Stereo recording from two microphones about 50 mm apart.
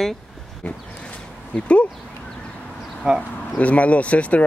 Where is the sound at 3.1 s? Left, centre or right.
Centre.